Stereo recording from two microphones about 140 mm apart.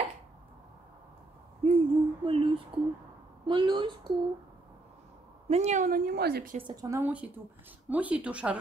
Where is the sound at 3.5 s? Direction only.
35° right (ahead or behind).